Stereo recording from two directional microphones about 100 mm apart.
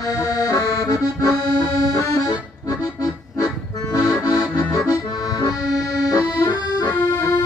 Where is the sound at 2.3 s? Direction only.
35° left (ahead or behind).